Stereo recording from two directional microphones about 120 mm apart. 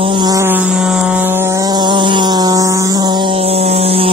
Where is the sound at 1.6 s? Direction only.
35° right (ahead or behind).